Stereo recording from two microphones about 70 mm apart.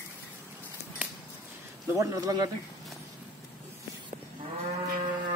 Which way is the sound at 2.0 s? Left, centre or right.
Right.